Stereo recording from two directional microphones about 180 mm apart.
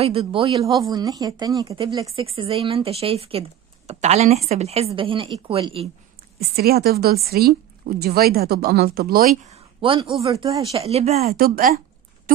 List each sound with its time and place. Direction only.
0.0 s speech: 30° right (ahead or behind)
6.4 s a woman's voice: 60° right (ahead or behind)
9.5 s speech: 30° right (ahead or behind)
10.3 s speech: 20° right (ahead or behind)
10.8 s speech: 35° right (ahead or behind)
11.3 s a woman's voice: 55° right (ahead or behind)